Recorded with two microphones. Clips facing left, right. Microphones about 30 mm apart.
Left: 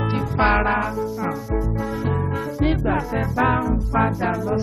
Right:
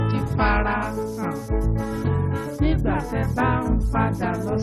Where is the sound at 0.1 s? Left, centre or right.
Centre.